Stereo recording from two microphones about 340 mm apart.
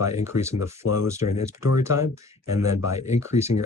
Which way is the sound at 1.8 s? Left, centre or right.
Centre.